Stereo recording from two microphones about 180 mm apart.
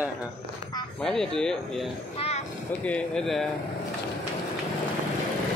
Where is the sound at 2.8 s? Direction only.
5° left (ahead or behind).